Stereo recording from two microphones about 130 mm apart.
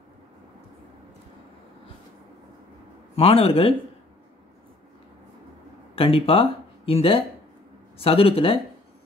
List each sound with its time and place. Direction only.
3.2 s speech: 50° left (ahead or behind)
5.9 s speech: 45° left (ahead or behind)